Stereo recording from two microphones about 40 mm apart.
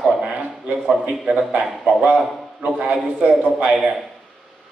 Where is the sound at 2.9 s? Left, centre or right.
Right.